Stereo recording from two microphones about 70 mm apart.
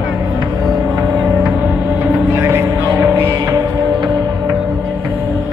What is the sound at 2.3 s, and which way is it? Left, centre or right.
Music, right.